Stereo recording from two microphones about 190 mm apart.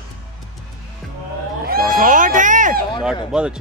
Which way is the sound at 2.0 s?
45° right (ahead or behind).